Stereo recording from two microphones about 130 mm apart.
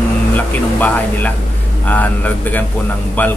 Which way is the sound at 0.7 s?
15° left (ahead or behind).